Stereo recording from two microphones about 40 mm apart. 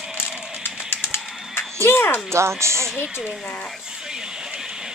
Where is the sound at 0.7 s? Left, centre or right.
Left.